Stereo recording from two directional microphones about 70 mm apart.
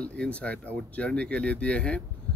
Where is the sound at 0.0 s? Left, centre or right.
Centre.